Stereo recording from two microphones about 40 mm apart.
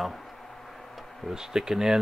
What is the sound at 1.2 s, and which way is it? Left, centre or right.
Speech, centre.